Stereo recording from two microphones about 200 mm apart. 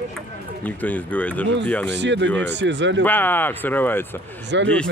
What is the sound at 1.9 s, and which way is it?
Speech, 60° right (ahead or behind).